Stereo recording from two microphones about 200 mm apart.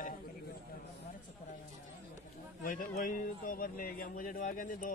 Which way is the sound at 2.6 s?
40° left (ahead or behind).